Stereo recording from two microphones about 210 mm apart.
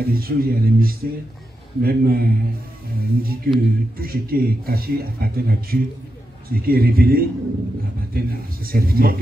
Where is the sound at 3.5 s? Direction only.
45° right (ahead or behind).